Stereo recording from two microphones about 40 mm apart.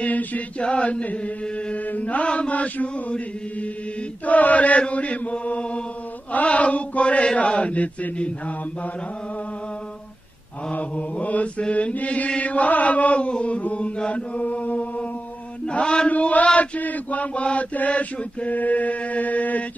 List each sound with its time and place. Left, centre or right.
0.0 s chant: left
0.6 s chant: left
1.0 s mantra: left
4.3 s mantra: left
10.7 s mantra: left
13.9 s chant: left
15.7 s chant: left
16.1 s mantra: left